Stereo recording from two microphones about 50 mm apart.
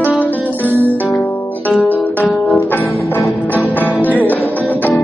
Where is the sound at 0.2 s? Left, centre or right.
Left.